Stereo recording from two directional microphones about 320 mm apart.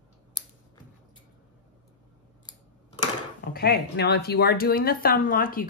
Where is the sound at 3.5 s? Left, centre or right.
Left.